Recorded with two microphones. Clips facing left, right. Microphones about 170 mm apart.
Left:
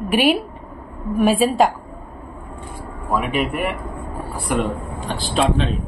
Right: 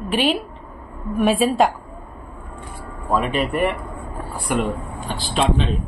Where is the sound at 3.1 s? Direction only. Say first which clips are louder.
Right 1 dB; 10° left (ahead or behind).